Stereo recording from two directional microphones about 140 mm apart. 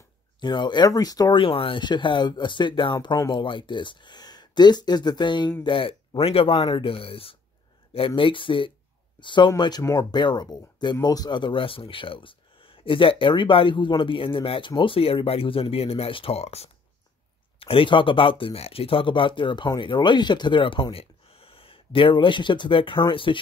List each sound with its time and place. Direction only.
0.4 s speech: 30° left (ahead or behind)